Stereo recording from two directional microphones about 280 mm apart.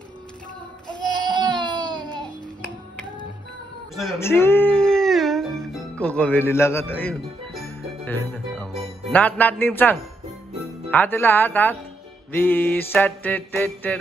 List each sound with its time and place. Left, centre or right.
1.3 s baby cry: centre
3.9 s music: centre